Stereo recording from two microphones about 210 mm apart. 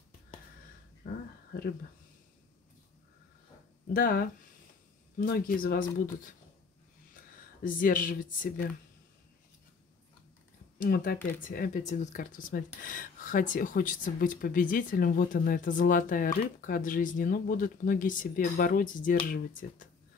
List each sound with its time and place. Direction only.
3.9 s speech: 40° left (ahead or behind)
7.6 s speech: 40° left (ahead or behind)
10.8 s speech: 45° left (ahead or behind)